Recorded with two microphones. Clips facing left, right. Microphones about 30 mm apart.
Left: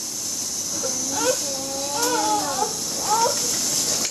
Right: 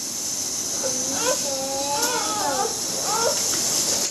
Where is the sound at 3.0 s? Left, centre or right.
Centre.